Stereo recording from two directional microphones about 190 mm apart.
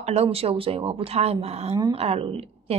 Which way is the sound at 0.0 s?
35° right (ahead or behind).